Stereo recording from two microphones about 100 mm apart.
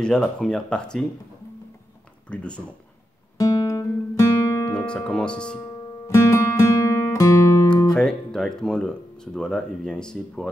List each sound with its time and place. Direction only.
0.0 s speech: 5° left (ahead or behind)
2.2 s speech: 10° left (ahead or behind)
3.3 s guitar: 35° left (ahead or behind)
4.6 s speech: 10° left (ahead or behind)
6.0 s music: 30° left (ahead or behind)
7.6 s guitar: 45° left (ahead or behind)
7.9 s speech: 5° left (ahead or behind)